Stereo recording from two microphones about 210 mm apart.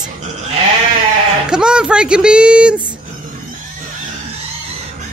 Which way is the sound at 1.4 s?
5° right (ahead or behind).